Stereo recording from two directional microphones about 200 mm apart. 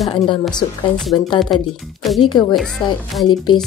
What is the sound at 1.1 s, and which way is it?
Speech, 20° left (ahead or behind).